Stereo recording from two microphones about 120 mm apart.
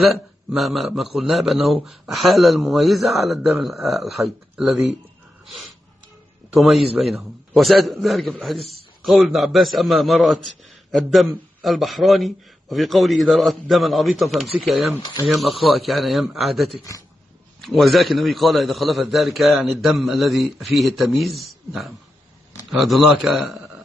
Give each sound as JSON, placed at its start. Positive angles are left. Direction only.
{"t": 0.0, "sound": "a man's voice", "side_deg": 0}
{"t": 6.5, "sound": "a man's voice", "side_deg": 0}
{"t": 15.0, "sound": "speech", "side_deg": 35}
{"t": 15.2, "sound": "a man's voice", "side_deg": 0}